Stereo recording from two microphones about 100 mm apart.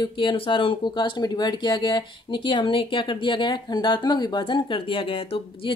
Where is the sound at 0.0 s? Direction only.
55° left (ahead or behind).